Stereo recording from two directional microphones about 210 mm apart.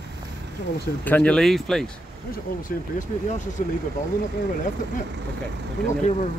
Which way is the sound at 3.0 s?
35° left (ahead or behind).